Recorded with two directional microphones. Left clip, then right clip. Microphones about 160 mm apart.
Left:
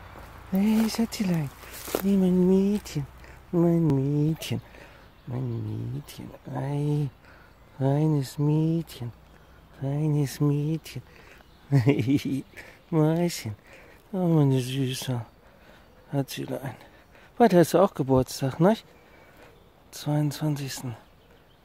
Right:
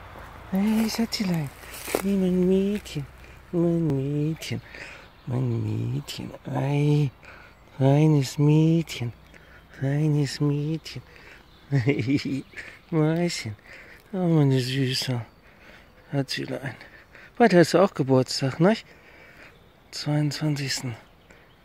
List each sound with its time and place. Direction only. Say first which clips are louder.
0.5 s speech: even; 20° left (ahead or behind)
4.7 s speech: right 8 dB; 15° right (ahead or behind)
10.1 s speech: right 1 dB; 10° left (ahead or behind)
19.9 s speech: right 2 dB; 5° left (ahead or behind)